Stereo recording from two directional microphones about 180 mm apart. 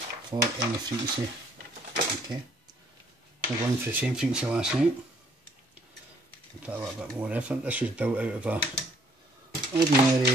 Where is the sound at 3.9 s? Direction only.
5° right (ahead or behind).